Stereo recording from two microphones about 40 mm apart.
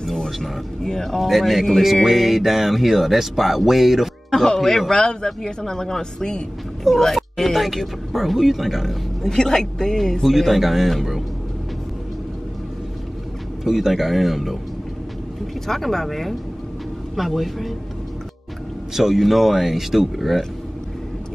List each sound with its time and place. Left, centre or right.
0.0 s speech: centre
4.3 s a man's voice: centre
7.0 s speech: centre
9.2 s a man's voice: centre
10.2 s speech: centre
13.7 s speech: centre
15.6 s speech: centre
18.9 s speech: centre